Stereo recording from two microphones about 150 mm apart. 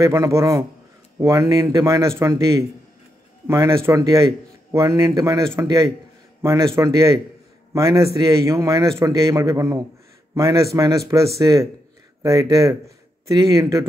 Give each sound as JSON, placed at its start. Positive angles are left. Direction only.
{"t": 0.0, "sound": "speech", "side_deg": -20}